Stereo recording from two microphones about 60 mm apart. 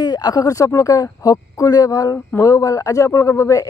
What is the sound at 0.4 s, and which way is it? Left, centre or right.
Speech, left.